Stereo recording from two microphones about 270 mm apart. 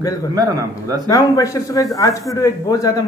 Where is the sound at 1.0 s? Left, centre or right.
Centre.